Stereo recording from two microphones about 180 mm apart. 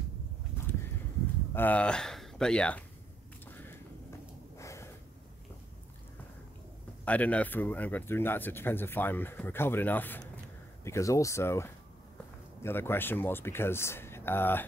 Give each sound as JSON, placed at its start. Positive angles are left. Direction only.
{"t": 0.6, "sound": "a sound", "side_deg": 10}
{"t": 1.5, "sound": "speech", "side_deg": 10}
{"t": 4.6, "sound": "gasp", "side_deg": 15}
{"t": 7.1, "sound": "speech", "side_deg": 10}